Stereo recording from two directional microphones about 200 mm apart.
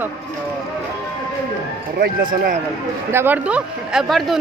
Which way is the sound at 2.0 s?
45° right (ahead or behind).